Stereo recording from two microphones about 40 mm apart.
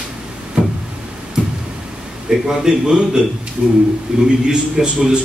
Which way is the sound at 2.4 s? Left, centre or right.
Centre.